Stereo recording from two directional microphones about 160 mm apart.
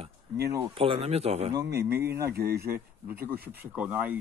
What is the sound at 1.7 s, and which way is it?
Speech, 15° right (ahead or behind).